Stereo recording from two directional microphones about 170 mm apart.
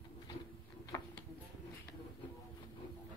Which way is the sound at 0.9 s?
15° left (ahead or behind).